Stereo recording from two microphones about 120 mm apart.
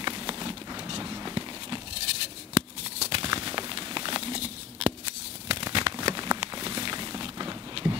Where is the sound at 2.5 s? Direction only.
55° right (ahead or behind).